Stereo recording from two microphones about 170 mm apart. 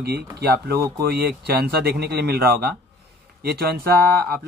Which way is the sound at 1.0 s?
75° right (ahead or behind).